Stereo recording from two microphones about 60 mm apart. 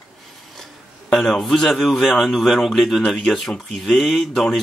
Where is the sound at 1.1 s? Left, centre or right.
Centre.